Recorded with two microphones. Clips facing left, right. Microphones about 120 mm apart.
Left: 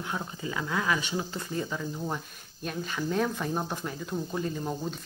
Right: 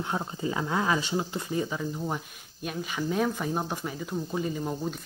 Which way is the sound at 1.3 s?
15° right (ahead or behind).